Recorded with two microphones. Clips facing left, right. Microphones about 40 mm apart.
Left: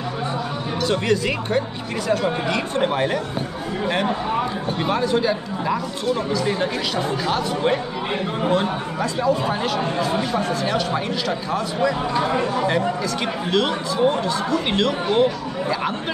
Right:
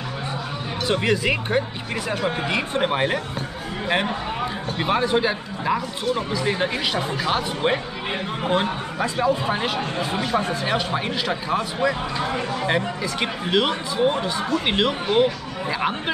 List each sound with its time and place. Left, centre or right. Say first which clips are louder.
0.8 s speech: even; centre
4.8 s a man's voice: even; right